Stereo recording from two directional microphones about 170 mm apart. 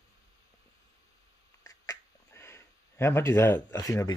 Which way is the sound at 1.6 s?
20° left (ahead or behind).